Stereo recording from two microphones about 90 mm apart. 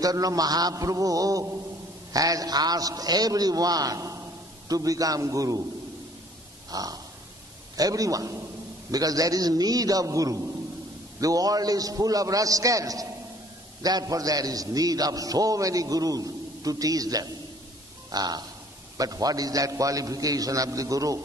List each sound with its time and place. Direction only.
0.0 s a man's voice: 40° right (ahead or behind)
6.7 s grunt: 45° right (ahead or behind)
7.7 s a man's voice: 40° right (ahead or behind)